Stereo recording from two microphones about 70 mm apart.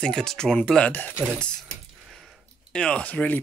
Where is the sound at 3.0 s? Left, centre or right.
Left.